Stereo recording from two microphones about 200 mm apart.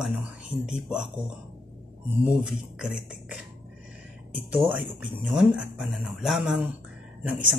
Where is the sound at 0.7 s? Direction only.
5° right (ahead or behind).